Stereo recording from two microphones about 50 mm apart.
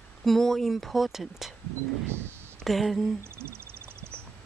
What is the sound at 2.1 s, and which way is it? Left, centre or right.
Speech, right.